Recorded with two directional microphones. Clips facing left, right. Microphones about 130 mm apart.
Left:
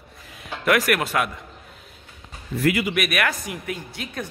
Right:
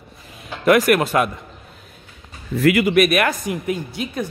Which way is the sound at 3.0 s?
25° right (ahead or behind).